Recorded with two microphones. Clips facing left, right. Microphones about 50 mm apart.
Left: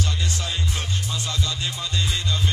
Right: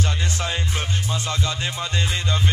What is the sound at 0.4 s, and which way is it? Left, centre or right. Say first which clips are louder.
Music: right 3 dB; right.